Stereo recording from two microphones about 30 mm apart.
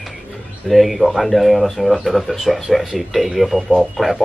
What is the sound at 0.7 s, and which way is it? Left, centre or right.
Speech, centre.